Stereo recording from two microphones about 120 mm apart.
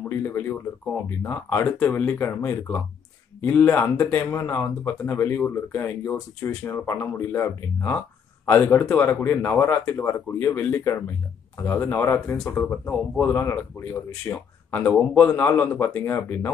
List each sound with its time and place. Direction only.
0.0 s speech: 20° left (ahead or behind)
3.3 s speech: 15° left (ahead or behind)